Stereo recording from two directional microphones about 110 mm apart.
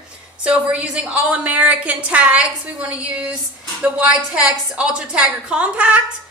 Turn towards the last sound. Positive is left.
turn(degrees=-10)  # may be behind; listen again after turning